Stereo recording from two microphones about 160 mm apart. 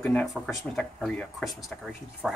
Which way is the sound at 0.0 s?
5° left (ahead or behind).